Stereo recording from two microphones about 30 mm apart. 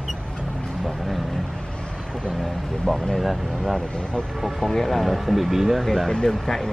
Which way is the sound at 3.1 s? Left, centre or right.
Centre.